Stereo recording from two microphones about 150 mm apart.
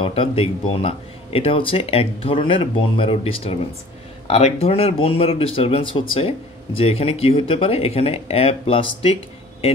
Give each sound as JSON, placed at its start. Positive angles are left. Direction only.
{"t": 0.0, "sound": "speech", "side_deg": 40}